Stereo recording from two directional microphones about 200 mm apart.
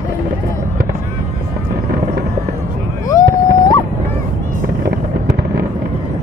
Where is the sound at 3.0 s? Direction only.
20° left (ahead or behind).